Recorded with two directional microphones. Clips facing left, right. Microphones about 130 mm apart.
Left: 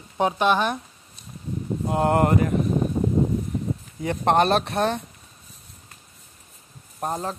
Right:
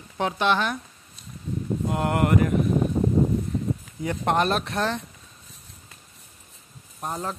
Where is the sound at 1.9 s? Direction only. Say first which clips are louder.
Left 4 dB; 30° left (ahead or behind).